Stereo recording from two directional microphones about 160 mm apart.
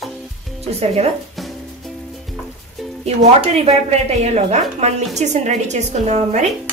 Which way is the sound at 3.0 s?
40° right (ahead or behind).